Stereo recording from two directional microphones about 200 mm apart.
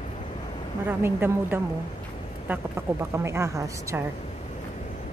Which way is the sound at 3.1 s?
15° right (ahead or behind).